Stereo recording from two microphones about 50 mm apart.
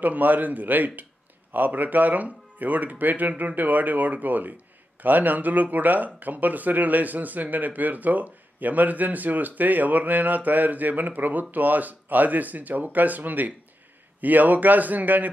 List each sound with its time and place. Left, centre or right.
0.0 s speech: right